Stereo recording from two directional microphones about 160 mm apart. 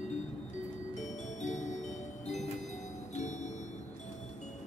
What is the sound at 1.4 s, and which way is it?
Music, 50° left (ahead or behind).